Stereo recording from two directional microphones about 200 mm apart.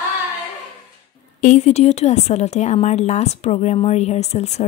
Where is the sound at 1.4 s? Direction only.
35° left (ahead or behind).